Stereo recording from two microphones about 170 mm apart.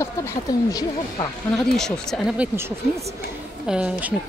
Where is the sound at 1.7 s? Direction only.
5° left (ahead or behind).